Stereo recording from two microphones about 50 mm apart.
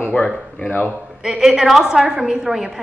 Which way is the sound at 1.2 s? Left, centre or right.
Centre.